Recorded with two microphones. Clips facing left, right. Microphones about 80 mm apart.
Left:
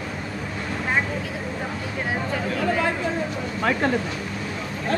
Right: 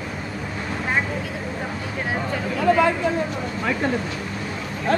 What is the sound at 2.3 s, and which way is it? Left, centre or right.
Chatter, centre.